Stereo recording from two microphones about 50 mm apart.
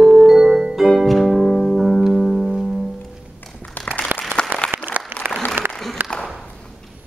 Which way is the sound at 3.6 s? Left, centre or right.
Left.